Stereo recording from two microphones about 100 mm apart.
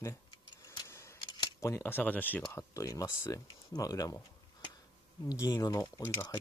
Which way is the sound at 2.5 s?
30° left (ahead or behind).